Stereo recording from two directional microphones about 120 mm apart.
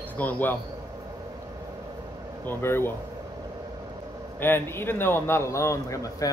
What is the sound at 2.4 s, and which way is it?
Speech, 20° left (ahead or behind).